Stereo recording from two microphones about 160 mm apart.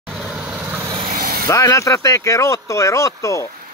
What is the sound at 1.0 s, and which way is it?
Vehicle, 65° right (ahead or behind).